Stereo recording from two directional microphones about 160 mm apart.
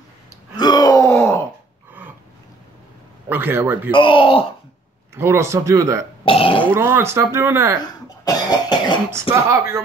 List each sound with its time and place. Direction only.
0.6 s groan: 25° left (ahead or behind)
3.3 s a man's voice: 10° right (ahead or behind)
3.9 s speech: 30° left (ahead or behind)
5.1 s a man's voice: 15° right (ahead or behind)
6.2 s speech: 35° left (ahead or behind)
6.7 s a man's voice: 15° right (ahead or behind)
8.5 s cough: 25° left (ahead or behind)
9.3 s a man's voice: 20° right (ahead or behind)